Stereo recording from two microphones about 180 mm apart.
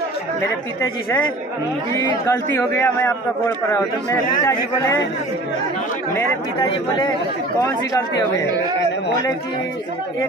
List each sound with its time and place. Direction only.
2.0 s a man's voice: 15° left (ahead or behind)